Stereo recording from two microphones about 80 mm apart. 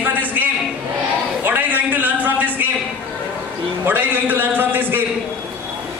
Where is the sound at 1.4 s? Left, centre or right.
Right.